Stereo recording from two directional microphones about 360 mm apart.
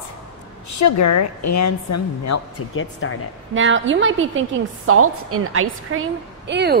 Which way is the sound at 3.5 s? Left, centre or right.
Right.